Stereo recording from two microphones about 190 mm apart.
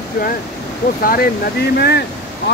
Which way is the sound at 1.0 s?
50° left (ahead or behind).